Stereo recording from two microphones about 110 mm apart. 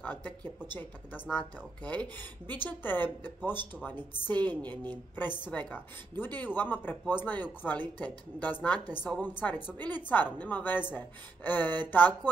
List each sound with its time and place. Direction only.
0.0 s speech: 15° left (ahead or behind)